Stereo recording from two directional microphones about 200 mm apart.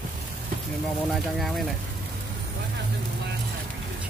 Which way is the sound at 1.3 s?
Centre (ahead or behind).